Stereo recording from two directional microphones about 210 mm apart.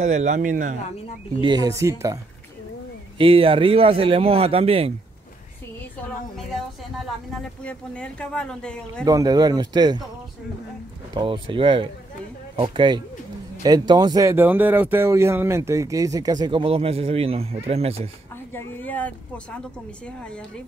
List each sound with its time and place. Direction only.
0.0 s speech: 35° right (ahead or behind)
1.4 s speech: 20° right (ahead or behind)
3.2 s speech: 25° right (ahead or behind)
7.6 s speech: 5° left (ahead or behind)
9.0 s speech: 15° right (ahead or behind)
11.1 s speech: 20° right (ahead or behind)
18.5 s speech: 10° left (ahead or behind)